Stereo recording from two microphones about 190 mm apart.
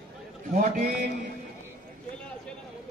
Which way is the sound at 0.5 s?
50° right (ahead or behind).